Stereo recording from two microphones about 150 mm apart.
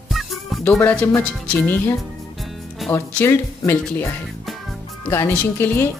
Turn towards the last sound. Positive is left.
turn(degrees=15)  # may be behind; listen again after turning